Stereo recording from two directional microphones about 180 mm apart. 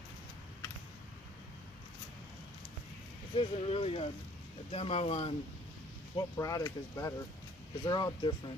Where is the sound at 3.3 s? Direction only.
30° left (ahead or behind).